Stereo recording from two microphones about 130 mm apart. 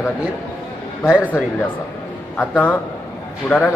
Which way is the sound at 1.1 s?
5° right (ahead or behind).